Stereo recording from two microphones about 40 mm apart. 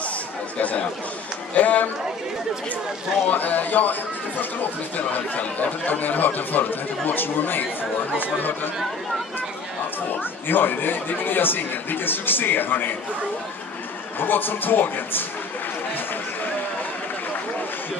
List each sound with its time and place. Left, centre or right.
0.6 s speech: left
3.3 s speech: left
10.5 s speech: left
14.2 s speech: left